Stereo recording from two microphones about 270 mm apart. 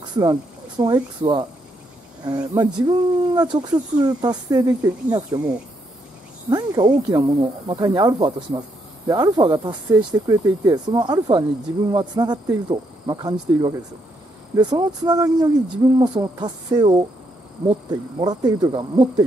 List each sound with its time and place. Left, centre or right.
0.1 s speech: centre
6.5 s speech: centre
18.2 s speech: centre